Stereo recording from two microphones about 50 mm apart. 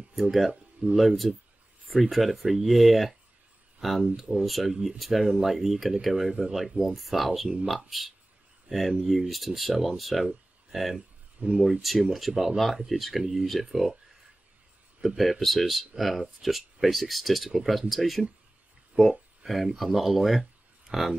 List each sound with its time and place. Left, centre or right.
0.1 s speech: centre
6.4 s mechanisms: centre
6.9 s speech: centre
11.4 s speech: right
11.8 s speech: centre
15.0 s speech: centre
20.9 s mechanisms: centre